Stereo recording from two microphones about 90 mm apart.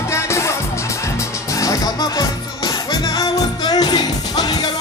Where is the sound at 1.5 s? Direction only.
40° left (ahead or behind).